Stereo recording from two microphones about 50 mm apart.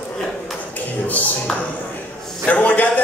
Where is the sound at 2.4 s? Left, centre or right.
Left.